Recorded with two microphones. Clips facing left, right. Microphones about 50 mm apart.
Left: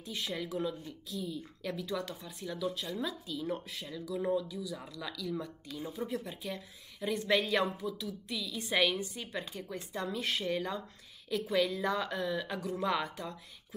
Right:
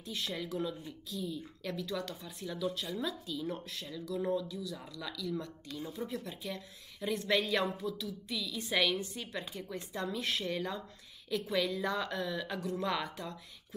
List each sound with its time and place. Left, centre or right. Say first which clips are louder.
0.0 s speech: left 1 dB; centre
1.7 s speech: left 1 dB; centre
2.0 s speech: left 1 dB; centre
12.5 s speech: even; centre
12.8 s speech: left 5 dB; centre